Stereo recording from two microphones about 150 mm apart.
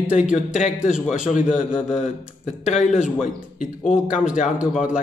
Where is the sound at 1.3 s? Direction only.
60° left (ahead or behind).